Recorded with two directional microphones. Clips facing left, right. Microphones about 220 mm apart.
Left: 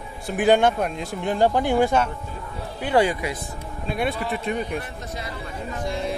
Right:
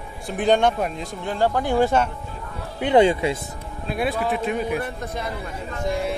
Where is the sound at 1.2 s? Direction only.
15° left (ahead or behind).